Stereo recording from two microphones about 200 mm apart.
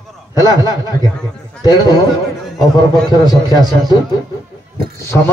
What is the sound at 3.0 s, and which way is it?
Speech, 20° left (ahead or behind).